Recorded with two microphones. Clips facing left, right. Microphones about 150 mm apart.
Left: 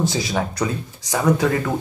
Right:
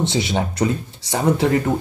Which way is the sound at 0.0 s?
25° right (ahead or behind).